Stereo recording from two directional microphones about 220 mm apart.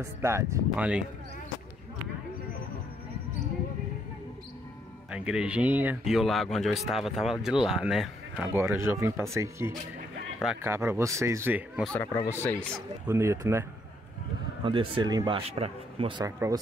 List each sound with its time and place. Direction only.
0.0 s speech: 10° right (ahead or behind)
5.1 s speech: 5° right (ahead or behind)
11.9 s speech: 15° left (ahead or behind)
13.0 s speech: 10° right (ahead or behind)
14.6 s speech: 25° right (ahead or behind)